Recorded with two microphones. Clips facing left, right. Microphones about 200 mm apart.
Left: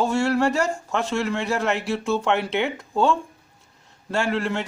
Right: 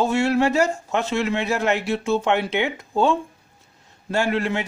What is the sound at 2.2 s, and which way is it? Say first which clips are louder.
Speech: right 1 dB; 15° right (ahead or behind).